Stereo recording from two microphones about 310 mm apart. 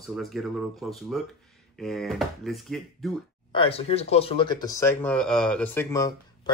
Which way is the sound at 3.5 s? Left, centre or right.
Centre.